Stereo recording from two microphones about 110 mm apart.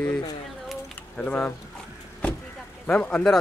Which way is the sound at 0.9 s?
15° left (ahead or behind).